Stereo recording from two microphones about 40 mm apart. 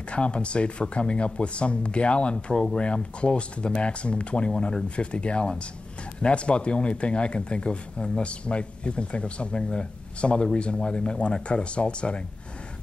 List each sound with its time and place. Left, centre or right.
0.1 s speech: left